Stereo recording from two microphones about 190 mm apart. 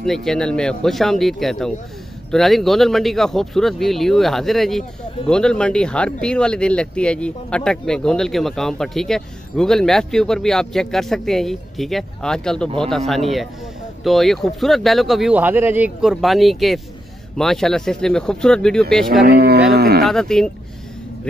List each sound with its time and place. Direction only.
0.0 s speech: centre (ahead or behind)
19.2 s speech: 55° right (ahead or behind)
20.1 s speech: centre (ahead or behind)